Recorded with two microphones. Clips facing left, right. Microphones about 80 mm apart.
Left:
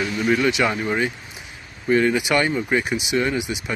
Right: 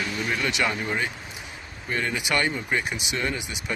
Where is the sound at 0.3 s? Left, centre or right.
Centre.